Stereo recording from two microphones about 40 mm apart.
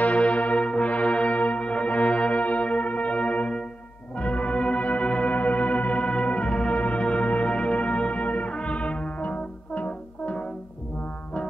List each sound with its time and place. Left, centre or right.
0.0 s music: left
4.2 s brass instrument: left
5.3 s music: left